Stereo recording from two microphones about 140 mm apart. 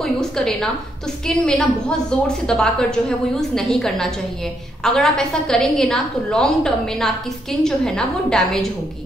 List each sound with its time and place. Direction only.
0.0 s a woman's voice: 5° left (ahead or behind)